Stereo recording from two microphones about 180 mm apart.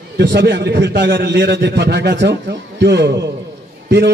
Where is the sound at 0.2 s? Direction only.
70° right (ahead or behind).